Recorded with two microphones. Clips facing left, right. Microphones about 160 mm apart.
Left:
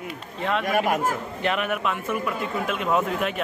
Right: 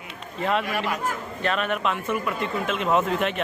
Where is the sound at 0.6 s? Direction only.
50° left (ahead or behind).